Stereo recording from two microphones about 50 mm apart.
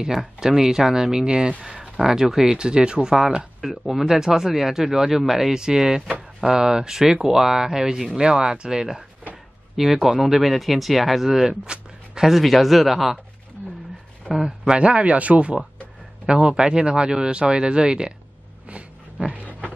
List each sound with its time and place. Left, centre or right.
0.0 s speech: centre
3.6 s speech: centre
11.3 s a sound: centre
12.3 s speech: centre
14.3 s speech: centre
14.7 s speech: right
18.7 s a sound: right